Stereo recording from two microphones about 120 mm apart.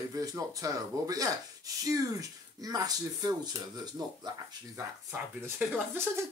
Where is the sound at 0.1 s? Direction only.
30° right (ahead or behind).